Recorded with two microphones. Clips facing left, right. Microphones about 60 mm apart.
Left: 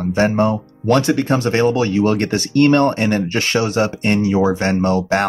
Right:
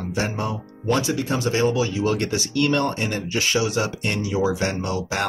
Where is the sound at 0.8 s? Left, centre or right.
Left.